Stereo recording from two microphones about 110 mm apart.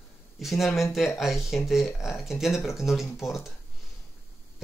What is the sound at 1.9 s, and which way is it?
Speech, 25° left (ahead or behind).